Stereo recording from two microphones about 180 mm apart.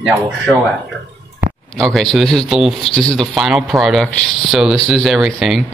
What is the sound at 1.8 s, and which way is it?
Speech, centre (ahead or behind).